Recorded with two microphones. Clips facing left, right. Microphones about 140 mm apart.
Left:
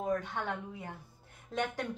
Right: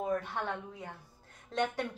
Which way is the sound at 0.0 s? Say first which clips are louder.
Even; 5° right (ahead or behind).